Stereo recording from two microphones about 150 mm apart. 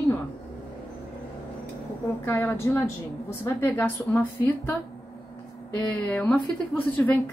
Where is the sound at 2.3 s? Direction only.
15° left (ahead or behind).